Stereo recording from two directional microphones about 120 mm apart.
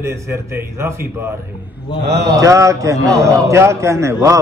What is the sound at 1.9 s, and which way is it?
Speech, 45° left (ahead or behind).